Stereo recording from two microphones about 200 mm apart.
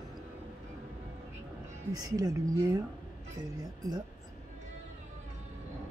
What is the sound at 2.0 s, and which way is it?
Speech, 20° right (ahead or behind).